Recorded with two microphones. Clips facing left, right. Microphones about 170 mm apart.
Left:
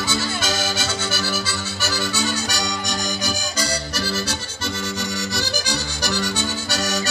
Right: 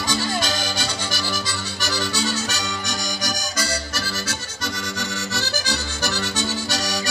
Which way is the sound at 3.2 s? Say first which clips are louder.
Left 2 dB; 35° left (ahead or behind).